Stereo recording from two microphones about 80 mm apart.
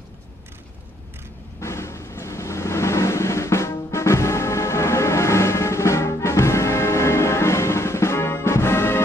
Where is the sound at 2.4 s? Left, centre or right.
Left.